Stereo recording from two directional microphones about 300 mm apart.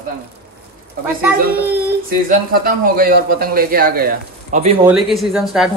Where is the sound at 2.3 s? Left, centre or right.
Right.